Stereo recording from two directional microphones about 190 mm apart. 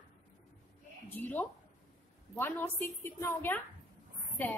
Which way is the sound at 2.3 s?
10° left (ahead or behind).